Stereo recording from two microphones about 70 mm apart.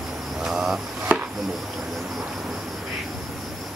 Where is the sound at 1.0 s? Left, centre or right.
Centre.